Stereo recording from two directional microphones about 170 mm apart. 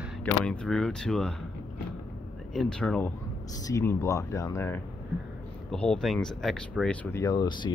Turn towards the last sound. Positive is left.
turn(degrees=25)  # may be behind; listen again after turning